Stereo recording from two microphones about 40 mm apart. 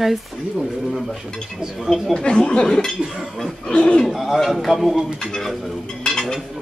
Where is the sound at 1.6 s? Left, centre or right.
Right.